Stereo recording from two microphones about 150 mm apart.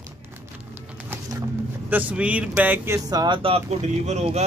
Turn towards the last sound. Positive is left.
turn(degrees=-45)  # may be behind; listen again after turning